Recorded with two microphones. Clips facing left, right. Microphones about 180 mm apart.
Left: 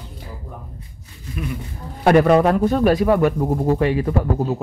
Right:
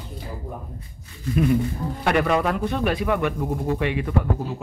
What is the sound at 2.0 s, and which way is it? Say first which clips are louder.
Speech: left 8 dB; 45° left (ahead or behind).